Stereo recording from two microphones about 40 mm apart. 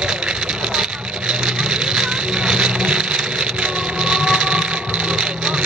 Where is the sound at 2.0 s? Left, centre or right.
Centre.